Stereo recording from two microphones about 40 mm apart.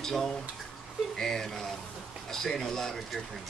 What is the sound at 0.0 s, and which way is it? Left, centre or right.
Speech, centre.